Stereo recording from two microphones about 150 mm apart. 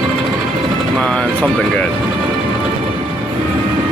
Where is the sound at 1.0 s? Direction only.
10° left (ahead or behind).